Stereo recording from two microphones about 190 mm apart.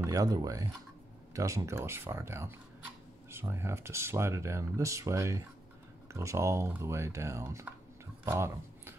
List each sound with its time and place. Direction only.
0.0 s speech: 20° right (ahead or behind)